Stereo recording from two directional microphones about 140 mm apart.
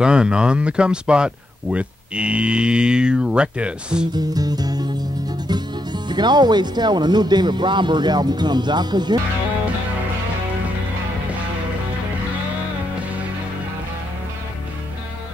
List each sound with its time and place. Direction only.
0.0 s speech: 5° right (ahead or behind)
4.1 s music: 25° right (ahead or behind)
5.5 s speech: 30° right (ahead or behind)